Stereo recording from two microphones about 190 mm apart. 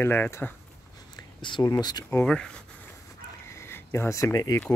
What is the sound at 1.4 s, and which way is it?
Speech, 25° left (ahead or behind).